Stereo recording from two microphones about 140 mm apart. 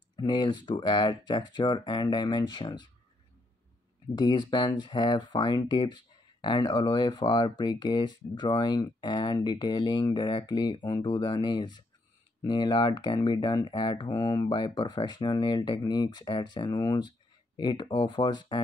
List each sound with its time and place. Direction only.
0.1 s speech: 30° left (ahead or behind)
4.1 s speech: 30° left (ahead or behind)